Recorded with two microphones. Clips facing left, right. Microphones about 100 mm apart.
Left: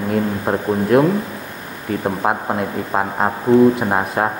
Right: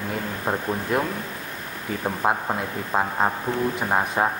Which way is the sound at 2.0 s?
10° left (ahead or behind).